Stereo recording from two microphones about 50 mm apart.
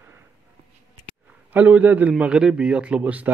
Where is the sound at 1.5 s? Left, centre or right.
Right.